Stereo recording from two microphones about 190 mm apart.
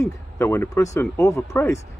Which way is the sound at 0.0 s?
15° left (ahead or behind).